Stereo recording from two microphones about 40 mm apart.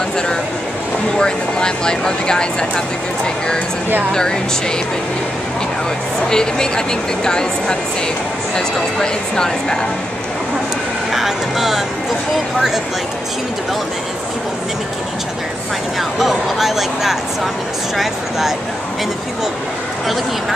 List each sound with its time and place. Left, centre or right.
1.1 s speech: centre
4.1 s speech: centre
6.2 s speech: centre
11.1 s speech: centre
16.0 s speech: centre